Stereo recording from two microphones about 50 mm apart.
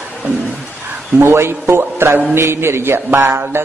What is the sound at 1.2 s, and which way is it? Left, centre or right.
A man's voice, right.